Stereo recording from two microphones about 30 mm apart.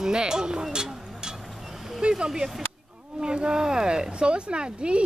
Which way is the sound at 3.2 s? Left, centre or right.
Right.